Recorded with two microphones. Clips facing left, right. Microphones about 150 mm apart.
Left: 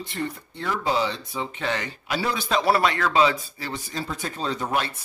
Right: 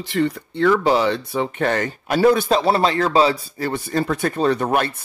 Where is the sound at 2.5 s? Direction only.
30° right (ahead or behind).